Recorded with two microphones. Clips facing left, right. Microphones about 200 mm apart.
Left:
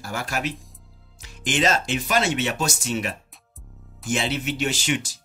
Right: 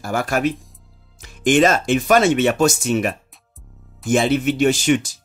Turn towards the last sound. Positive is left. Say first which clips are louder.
# right 9 dB
turn(degrees=-50)  # may be behind; listen again after turning